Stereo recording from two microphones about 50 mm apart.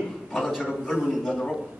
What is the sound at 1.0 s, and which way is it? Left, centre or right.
Speech, centre.